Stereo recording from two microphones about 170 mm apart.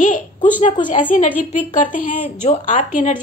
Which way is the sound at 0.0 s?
50° left (ahead or behind).